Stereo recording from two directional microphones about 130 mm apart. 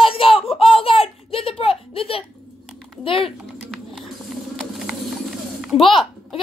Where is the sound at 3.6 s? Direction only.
Centre (ahead or behind).